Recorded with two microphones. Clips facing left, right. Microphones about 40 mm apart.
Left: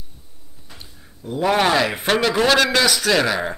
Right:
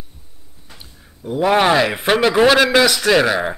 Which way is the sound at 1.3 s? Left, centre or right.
Centre.